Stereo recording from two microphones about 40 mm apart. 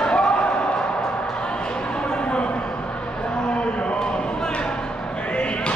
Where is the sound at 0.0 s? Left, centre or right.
Left.